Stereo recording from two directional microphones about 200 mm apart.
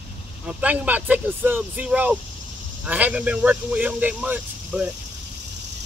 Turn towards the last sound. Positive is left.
turn(degrees=-5)  # may be behind; listen again after turning